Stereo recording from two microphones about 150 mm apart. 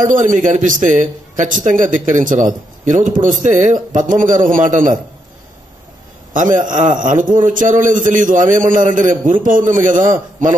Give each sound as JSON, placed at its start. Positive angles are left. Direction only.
{"t": 0.0, "sound": "a man's voice", "side_deg": -60}
{"t": 6.3, "sound": "a man's voice", "side_deg": -60}